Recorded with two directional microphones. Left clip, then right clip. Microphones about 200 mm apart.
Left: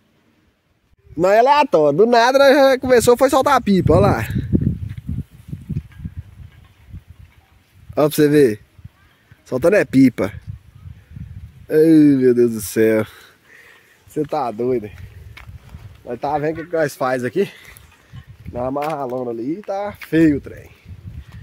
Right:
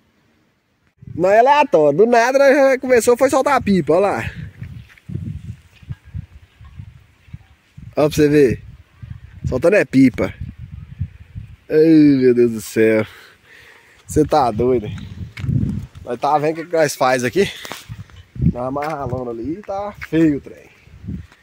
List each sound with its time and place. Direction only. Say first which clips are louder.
1.1 s a man's voice: right 1 dB; centre (ahead or behind)
7.9 s a man's voice: even; 5° left (ahead or behind)
11.6 s a man's voice: right 1 dB; 5° left (ahead or behind)
14.1 s speech: right 7 dB; 50° right (ahead or behind)
14.6 s speech: right 3 dB; 30° right (ahead or behind)
18.5 s a man's voice: left 1 dB; 10° right (ahead or behind)